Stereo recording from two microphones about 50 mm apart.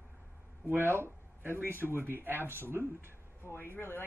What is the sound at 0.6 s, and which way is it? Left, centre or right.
Speech, right.